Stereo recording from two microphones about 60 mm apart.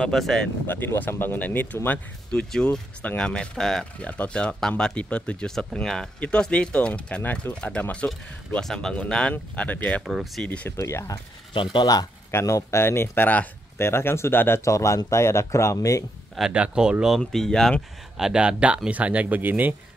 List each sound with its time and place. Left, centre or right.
0.0 s speech: centre
0.7 s speech: left
2.3 s speech: centre
4.0 s speech: left
6.1 s speech: left
8.6 s speech: centre
10.8 s speech: left
11.8 s speech: left
12.3 s speech: left
13.7 s speech: left
14.6 s speech: left
16.5 s speech: centre
17.2 s speech: centre
18.1 s speech: centre; by 19.7 s right